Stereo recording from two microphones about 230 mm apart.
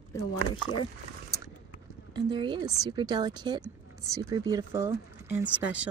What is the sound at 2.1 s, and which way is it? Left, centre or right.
Speech, centre.